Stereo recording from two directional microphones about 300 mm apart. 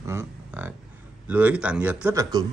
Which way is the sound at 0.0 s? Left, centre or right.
Centre.